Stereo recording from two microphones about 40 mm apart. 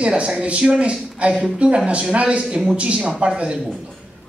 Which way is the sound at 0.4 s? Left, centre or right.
Right.